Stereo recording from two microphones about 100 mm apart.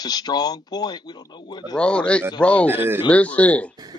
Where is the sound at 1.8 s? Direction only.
10° left (ahead or behind).